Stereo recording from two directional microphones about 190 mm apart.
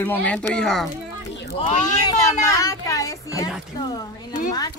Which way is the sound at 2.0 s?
20° left (ahead or behind).